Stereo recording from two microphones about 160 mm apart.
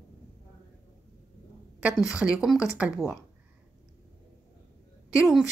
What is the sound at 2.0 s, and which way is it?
Speech, 5° right (ahead or behind).